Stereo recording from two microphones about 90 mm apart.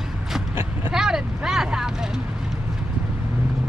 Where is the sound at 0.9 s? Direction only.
5° right (ahead or behind).